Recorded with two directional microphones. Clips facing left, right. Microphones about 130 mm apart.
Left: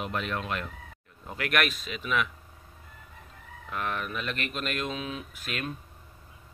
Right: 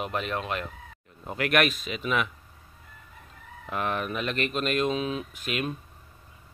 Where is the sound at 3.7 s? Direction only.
10° right (ahead or behind).